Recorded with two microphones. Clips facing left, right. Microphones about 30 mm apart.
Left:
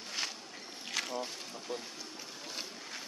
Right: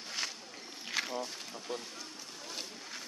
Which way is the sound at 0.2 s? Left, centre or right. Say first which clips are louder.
Even; centre.